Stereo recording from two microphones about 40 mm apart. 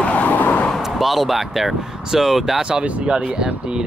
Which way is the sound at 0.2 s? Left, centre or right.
Left.